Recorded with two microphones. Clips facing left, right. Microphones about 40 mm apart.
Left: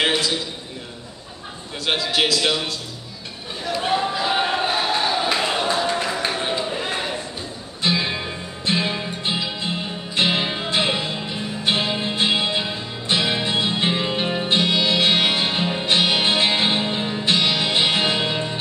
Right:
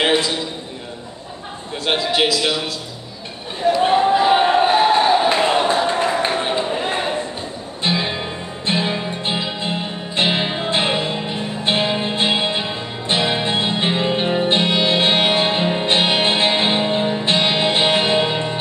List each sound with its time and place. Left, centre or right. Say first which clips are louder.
0.0 s a man's voice: right 3 dB; centre
2.0 s a man's voice: right 2 dB; centre
3.9 s a sound: right 5 dB; right
6.4 s a sound: right 4 dB; right
7.8 s music: right 1 dB; centre
17.2 s music: right 3 dB; right